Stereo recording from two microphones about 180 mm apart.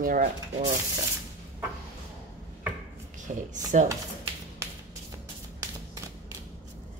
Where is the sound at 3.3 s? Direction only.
45° right (ahead or behind).